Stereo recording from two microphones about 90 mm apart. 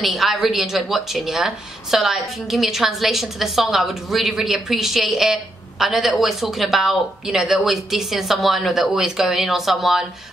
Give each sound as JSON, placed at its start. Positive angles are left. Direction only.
{"t": 0.0, "sound": "a woman's voice", "side_deg": 0}